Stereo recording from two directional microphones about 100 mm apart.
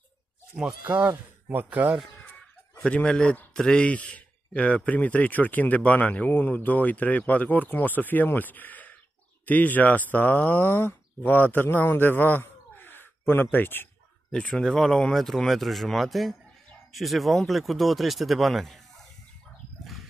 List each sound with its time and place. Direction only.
0.6 s speech: 10° right (ahead or behind)
2.8 s a man's voice: 10° left (ahead or behind)
14.3 s speech: 5° left (ahead or behind)
19.8 s a sound: centre (ahead or behind)